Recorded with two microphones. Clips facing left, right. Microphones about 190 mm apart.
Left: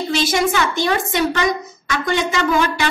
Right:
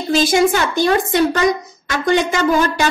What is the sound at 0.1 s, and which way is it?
A woman's voice, 40° right (ahead or behind).